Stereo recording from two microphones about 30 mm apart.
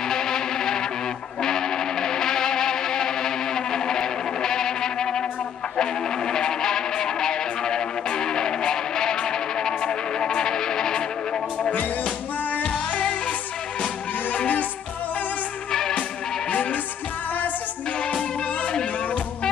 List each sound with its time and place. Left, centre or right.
0.0 s music: centre
11.7 s music: left
14.3 s music: left
16.4 s music: left